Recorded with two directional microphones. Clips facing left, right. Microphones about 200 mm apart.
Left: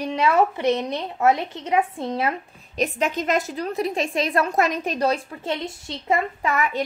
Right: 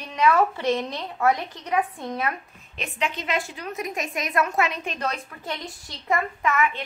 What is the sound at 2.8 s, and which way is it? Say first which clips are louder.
A woman's voice: left 7 dB; 45° left (ahead or behind).